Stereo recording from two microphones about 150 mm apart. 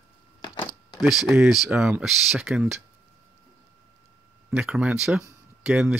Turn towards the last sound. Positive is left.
turn(degrees=-5)  # may be behind; listen again after turning